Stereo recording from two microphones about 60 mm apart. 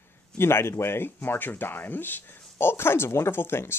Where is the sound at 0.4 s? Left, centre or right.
Left.